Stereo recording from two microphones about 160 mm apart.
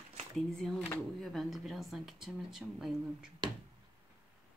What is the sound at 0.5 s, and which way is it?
Speech, centre (ahead or behind).